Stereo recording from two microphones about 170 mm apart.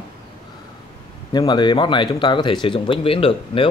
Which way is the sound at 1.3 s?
25° left (ahead or behind).